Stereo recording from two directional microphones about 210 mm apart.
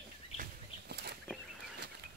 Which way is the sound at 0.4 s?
50° right (ahead or behind).